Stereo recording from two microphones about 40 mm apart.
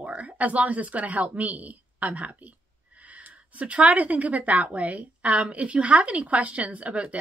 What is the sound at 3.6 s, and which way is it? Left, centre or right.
A woman's voice, right.